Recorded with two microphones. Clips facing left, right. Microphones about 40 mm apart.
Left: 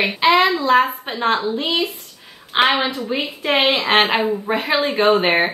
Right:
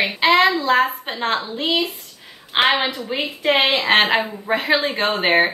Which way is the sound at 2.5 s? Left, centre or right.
Centre.